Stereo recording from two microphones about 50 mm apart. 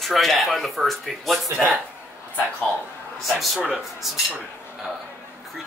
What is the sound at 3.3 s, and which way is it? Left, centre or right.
Speech, centre.